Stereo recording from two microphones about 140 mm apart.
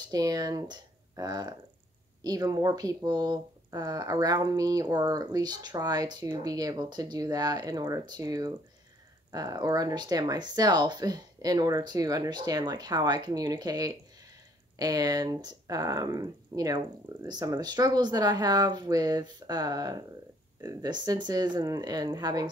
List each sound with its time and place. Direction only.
0.1 s speech: 25° right (ahead or behind)